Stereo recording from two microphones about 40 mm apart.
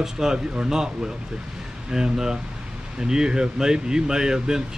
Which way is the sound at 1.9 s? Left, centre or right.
Centre.